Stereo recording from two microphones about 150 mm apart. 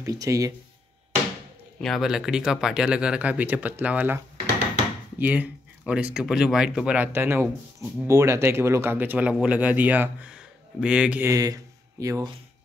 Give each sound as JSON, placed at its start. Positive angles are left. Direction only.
{"t": 0.0, "sound": "speech", "side_deg": -20}
{"t": 1.8, "sound": "speech", "side_deg": 0}
{"t": 5.2, "sound": "speech", "side_deg": -10}